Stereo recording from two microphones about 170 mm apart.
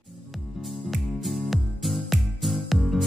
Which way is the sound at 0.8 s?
Centre (ahead or behind).